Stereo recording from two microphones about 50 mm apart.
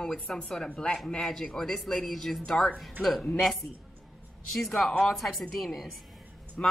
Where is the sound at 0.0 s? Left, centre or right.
Centre.